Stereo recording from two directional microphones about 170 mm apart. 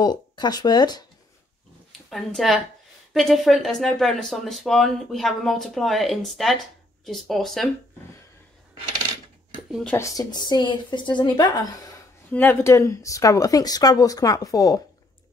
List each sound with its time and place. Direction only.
0.0 s speech: 25° left (ahead or behind)
1.9 s speech: centre (ahead or behind)
9.7 s speech: centre (ahead or behind)
9.9 s speech: 20° left (ahead or behind)
12.3 s speech: 10° left (ahead or behind)